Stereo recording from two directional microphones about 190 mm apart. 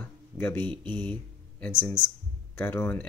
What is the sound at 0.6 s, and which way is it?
Speech, 25° right (ahead or behind).